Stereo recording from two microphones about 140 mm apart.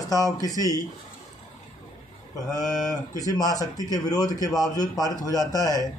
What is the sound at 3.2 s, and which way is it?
A man's voice, 25° left (ahead or behind).